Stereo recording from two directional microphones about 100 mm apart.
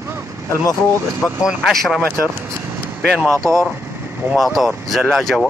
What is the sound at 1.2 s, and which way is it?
Speech, 10° left (ahead or behind).